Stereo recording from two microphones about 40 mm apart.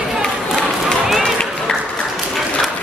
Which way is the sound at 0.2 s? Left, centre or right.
Centre.